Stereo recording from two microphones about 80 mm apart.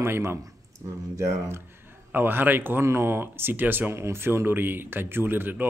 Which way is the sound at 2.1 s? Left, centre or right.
Right.